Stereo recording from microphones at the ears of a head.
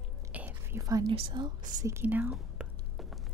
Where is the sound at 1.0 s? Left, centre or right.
Right.